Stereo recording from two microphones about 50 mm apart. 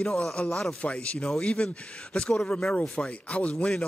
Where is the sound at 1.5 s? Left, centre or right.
Centre.